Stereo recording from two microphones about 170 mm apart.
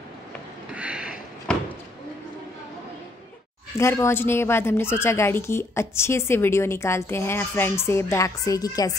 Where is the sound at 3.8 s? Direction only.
15° left (ahead or behind).